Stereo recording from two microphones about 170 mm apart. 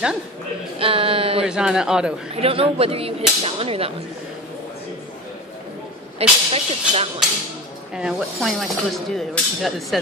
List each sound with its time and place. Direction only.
0.7 s a sound: 35° right (ahead or behind)
1.4 s speech: 5° right (ahead or behind)
2.4 s whip: 35° right (ahead or behind)
6.1 s whip: 35° right (ahead or behind)
7.9 s speech: 5° right (ahead or behind)